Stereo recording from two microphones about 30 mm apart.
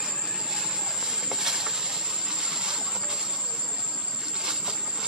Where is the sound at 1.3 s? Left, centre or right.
Centre.